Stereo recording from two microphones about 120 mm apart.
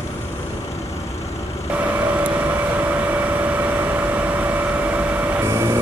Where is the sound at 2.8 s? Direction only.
15° right (ahead or behind).